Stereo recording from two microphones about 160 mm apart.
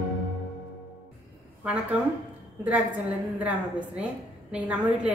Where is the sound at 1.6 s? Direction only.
10° right (ahead or behind).